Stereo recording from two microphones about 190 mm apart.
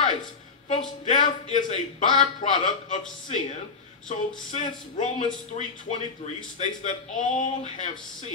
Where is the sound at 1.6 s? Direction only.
35° left (ahead or behind).